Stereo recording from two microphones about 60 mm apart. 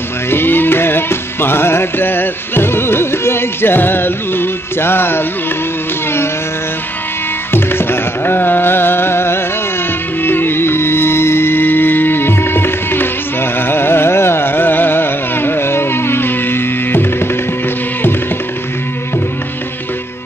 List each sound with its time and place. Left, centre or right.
0.3 s music: left
7.5 s music: left